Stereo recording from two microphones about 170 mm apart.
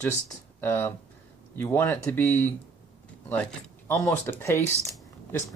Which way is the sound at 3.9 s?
15° left (ahead or behind).